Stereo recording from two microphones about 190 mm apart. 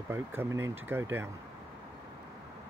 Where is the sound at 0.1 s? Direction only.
10° right (ahead or behind).